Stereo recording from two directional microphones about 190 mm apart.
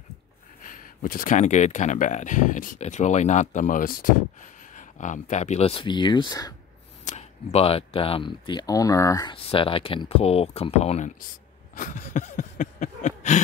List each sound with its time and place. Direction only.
0.6 s speech: 45° left (ahead or behind); by 6.5 s 20° left (ahead or behind)
7.1 s speech: 35° left (ahead or behind)
11.7 s a sound: 40° left (ahead or behind)